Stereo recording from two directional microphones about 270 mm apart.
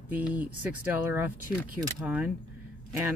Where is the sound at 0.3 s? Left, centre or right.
Centre.